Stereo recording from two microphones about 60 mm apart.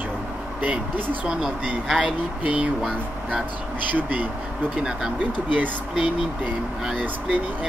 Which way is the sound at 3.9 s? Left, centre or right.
Right.